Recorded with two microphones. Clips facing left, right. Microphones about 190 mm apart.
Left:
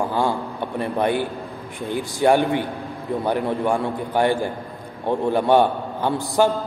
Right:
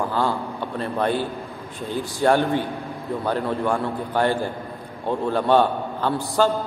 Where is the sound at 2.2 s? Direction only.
15° left (ahead or behind).